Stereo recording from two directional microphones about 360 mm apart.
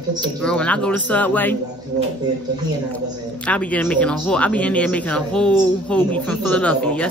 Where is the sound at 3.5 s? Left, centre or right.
Centre.